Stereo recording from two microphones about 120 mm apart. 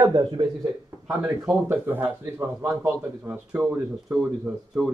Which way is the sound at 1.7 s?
15° right (ahead or behind).